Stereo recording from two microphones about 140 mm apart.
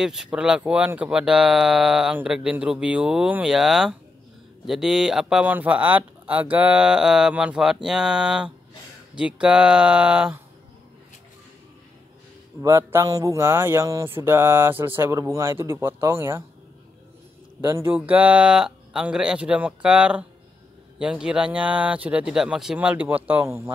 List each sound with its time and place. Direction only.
0.0 s speech: 5° right (ahead or behind)
12.6 s speech: 20° right (ahead or behind)
17.6 s speech: 20° right (ahead or behind)